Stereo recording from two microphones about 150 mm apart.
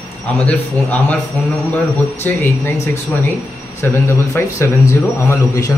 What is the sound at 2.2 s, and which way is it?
Speech, 15° left (ahead or behind).